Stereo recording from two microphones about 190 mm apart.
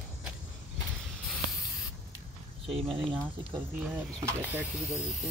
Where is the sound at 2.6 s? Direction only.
30° right (ahead or behind).